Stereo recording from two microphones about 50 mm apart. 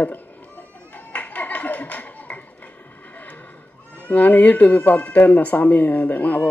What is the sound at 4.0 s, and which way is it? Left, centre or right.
Speech, left.